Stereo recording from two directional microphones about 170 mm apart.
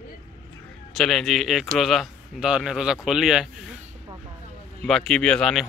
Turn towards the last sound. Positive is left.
turn(degrees=5)  # may be behind; listen again after turning